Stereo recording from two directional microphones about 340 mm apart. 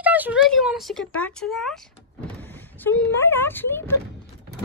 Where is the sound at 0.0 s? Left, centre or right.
Centre.